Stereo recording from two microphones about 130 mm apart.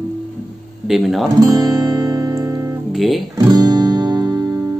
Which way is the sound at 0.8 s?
Centre (ahead or behind).